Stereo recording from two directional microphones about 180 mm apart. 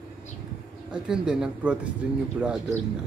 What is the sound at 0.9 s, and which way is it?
Speech, 5° right (ahead or behind).